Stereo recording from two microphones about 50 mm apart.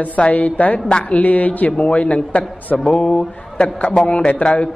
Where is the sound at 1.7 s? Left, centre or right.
Left.